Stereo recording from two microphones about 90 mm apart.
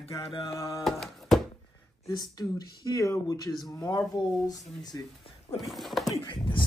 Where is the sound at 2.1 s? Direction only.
50° left (ahead or behind).